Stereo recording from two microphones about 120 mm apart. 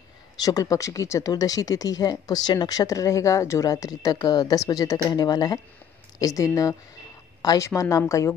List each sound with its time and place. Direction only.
0.4 s a woman's voice: 30° left (ahead or behind)